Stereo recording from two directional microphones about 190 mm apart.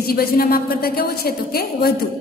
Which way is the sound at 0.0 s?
50° left (ahead or behind).